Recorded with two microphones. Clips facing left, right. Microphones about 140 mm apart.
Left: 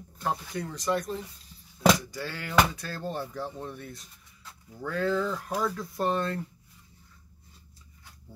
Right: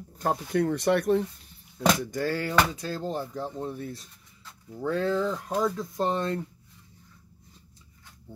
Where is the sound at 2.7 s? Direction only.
20° right (ahead or behind).